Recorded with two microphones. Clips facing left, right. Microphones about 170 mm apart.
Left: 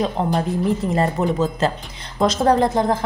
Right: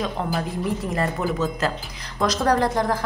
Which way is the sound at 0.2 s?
25° left (ahead or behind).